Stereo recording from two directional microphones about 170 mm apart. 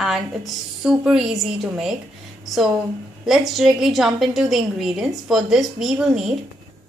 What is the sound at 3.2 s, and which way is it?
A woman's voice, centre (ahead or behind).